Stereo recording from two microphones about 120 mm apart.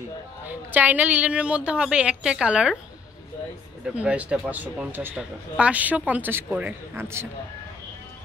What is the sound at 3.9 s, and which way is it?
Speech, 10° right (ahead or behind).